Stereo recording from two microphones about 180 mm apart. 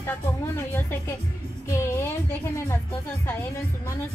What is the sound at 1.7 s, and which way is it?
Music, 15° left (ahead or behind).